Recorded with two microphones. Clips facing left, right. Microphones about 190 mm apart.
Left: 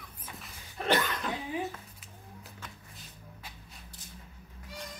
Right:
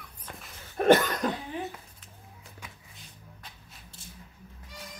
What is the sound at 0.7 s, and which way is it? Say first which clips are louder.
Cough: right 8 dB; 50° right (ahead or behind).